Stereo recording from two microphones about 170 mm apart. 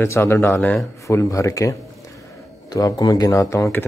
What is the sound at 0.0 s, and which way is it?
A man's voice, 15° left (ahead or behind).